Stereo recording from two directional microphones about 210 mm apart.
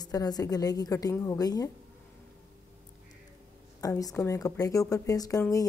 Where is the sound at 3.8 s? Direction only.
15° left (ahead or behind).